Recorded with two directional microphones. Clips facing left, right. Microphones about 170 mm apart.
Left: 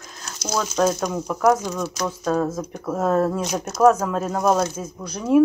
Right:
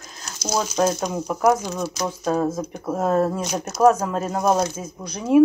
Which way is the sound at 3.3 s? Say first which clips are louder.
Left 1 dB; centre (ahead or behind).